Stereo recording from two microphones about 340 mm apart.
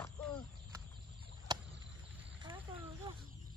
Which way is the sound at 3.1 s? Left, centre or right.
Centre.